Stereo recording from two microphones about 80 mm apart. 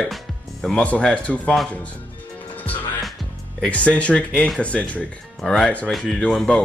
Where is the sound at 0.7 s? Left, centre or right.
Centre.